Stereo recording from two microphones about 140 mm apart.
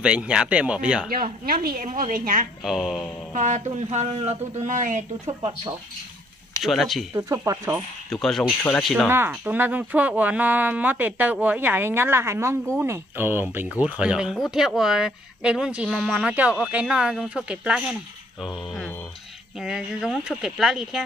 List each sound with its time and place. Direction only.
0.0 s speech: 5° right (ahead or behind)
1.1 s a woman's voice: 90° right
2.6 s speech: centre (ahead or behind)
3.3 s speech: 60° right (ahead or behind)
4.6 s speech: 65° right (ahead or behind)
6.6 s speech: centre (ahead or behind)
7.2 s speech: 25° right (ahead or behind)
8.1 s speech: centre (ahead or behind)
9.0 s speech: 15° right (ahead or behind)
19.6 s speech: 5° right (ahead or behind)